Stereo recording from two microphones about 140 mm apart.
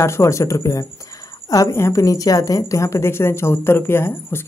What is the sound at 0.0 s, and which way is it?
A woman's voice, 20° left (ahead or behind).